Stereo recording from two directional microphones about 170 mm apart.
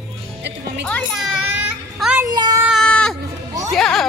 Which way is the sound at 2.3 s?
25° right (ahead or behind).